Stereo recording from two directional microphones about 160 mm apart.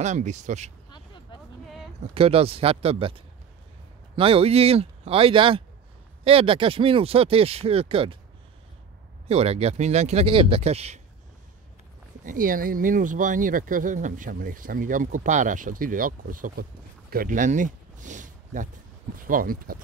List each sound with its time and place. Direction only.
0.0 s speech: 45° right (ahead or behind)
0.8 s a sound: 30° left (ahead or behind)
2.1 s speech: 35° right (ahead or behind)
4.2 s speech: 35° right (ahead or behind)
9.3 s speech: 40° right (ahead or behind)
12.3 s speech: 60° right (ahead or behind)